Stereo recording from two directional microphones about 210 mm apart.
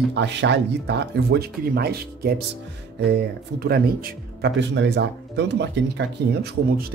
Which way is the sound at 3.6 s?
45° right (ahead or behind).